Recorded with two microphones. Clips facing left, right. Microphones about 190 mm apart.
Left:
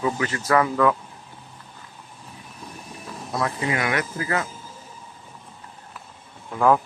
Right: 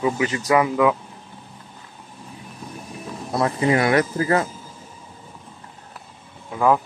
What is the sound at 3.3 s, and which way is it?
Speech, 30° right (ahead or behind).